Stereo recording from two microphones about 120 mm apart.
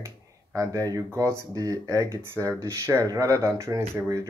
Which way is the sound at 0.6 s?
30° right (ahead or behind).